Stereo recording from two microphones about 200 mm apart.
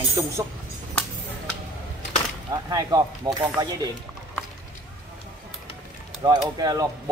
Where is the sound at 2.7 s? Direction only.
20° right (ahead or behind).